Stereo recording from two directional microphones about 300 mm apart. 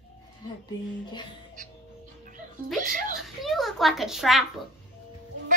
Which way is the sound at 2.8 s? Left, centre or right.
Right.